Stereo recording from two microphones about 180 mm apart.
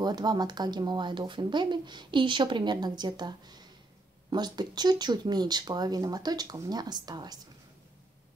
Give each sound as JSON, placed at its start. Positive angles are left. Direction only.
{"t": 0.0, "sound": "speech", "side_deg": -25}